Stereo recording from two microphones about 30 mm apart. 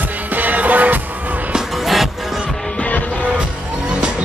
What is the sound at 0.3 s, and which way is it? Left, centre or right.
Music, right.